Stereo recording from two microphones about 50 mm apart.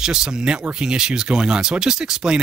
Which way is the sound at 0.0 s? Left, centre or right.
Centre.